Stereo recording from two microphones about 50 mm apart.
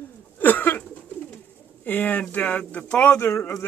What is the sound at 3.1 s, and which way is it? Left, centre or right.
Speech, left.